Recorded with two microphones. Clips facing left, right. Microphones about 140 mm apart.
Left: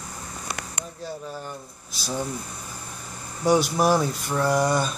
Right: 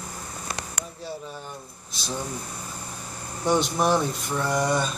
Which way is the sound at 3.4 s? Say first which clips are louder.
Left 2 dB; 5° left (ahead or behind).